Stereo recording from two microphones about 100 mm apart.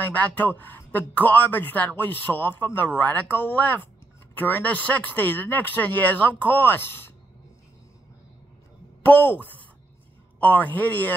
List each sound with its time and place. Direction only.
0.0 s speech: 15° left (ahead or behind)
9.0 s speech: 20° left (ahead or behind)